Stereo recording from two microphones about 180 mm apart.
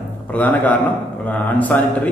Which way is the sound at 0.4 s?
10° left (ahead or behind).